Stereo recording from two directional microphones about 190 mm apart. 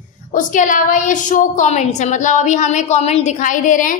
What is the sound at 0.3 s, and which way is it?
A woman's voice, 45° left (ahead or behind).